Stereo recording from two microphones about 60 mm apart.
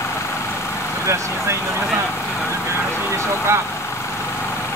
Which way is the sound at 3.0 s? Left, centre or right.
Right.